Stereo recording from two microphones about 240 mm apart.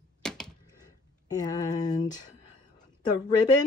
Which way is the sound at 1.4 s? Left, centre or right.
Centre.